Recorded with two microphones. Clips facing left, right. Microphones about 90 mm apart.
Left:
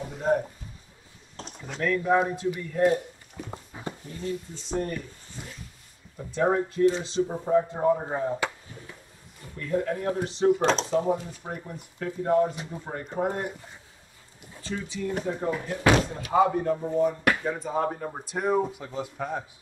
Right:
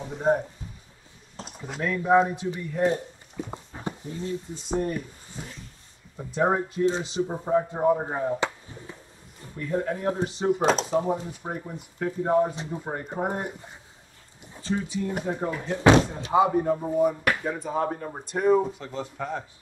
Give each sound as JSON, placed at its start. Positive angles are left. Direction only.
{"t": 1.7, "sound": "speech", "side_deg": -15}
{"t": 3.4, "sound": "a sound", "side_deg": -20}
{"t": 4.7, "sound": "speech", "side_deg": -15}
{"t": 9.6, "sound": "speech", "side_deg": -25}
{"t": 10.6, "sound": "speech", "side_deg": -5}
{"t": 11.1, "sound": "speech", "side_deg": -25}
{"t": 16.3, "sound": "speech", "side_deg": -10}